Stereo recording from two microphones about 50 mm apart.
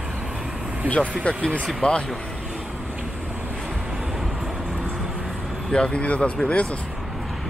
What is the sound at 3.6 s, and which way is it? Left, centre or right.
Vehicle, centre.